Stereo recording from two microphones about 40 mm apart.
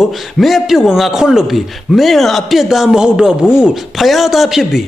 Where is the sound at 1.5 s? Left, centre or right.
Centre.